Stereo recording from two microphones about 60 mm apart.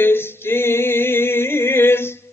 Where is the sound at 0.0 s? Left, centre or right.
Left.